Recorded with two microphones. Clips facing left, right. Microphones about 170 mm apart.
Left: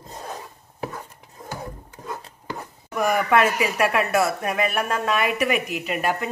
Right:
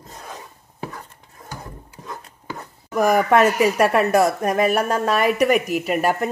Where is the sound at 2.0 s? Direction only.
20° left (ahead or behind).